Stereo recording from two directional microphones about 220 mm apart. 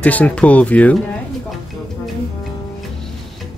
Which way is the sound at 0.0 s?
5° left (ahead or behind).